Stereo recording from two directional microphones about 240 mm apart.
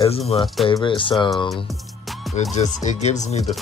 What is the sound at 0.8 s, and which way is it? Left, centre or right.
Speech, left.